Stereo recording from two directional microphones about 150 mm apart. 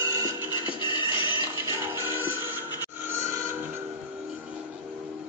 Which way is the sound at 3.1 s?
20° right (ahead or behind).